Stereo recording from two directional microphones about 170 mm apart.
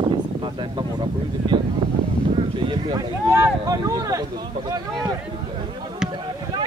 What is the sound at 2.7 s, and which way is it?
Speech, 25° right (ahead or behind).